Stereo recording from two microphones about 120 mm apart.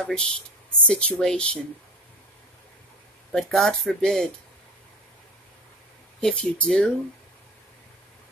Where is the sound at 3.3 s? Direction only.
5° left (ahead or behind).